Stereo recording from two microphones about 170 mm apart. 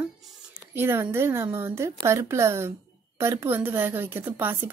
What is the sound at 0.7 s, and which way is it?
A woman's voice, 15° right (ahead or behind).